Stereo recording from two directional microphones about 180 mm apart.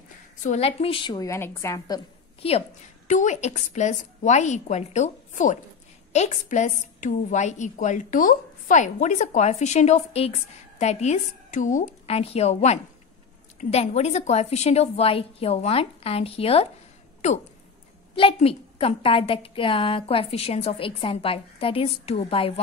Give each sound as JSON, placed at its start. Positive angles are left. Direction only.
{"t": 0.4, "sound": "a woman's voice", "side_deg": 40}
{"t": 2.4, "sound": "a woman's voice", "side_deg": 35}